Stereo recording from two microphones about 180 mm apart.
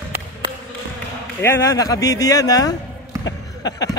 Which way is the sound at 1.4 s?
15° left (ahead or behind).